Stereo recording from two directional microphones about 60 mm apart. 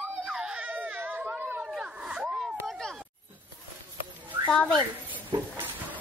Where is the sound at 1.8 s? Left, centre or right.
Centre.